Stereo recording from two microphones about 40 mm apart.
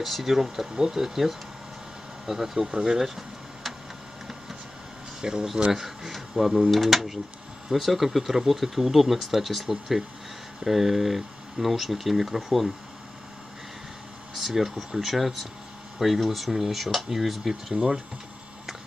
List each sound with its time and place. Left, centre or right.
0.0 s speech: centre
5.2 s speech: centre
5.7 s speech: centre
14.3 s speech: centre